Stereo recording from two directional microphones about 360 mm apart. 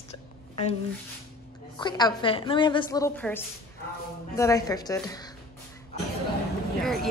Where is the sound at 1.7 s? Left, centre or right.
Centre.